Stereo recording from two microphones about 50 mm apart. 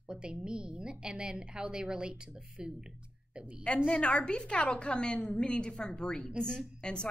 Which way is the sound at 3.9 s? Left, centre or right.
Left.